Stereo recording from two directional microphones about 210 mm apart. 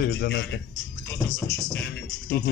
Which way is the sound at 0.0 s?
60° left (ahead or behind).